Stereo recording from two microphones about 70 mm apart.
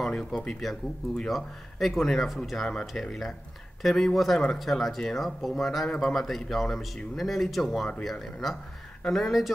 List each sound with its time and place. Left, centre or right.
0.0 s speech: centre